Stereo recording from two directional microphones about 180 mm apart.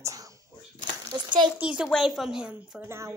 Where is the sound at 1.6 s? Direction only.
5° right (ahead or behind).